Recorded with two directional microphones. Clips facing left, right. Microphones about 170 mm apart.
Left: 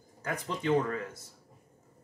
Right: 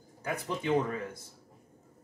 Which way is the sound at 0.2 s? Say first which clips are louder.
Even; 10° right (ahead or behind).